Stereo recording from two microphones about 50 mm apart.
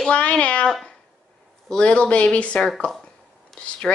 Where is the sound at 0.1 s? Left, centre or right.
Left.